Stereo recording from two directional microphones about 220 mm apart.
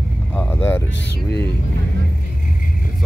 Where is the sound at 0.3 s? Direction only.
10° left (ahead or behind).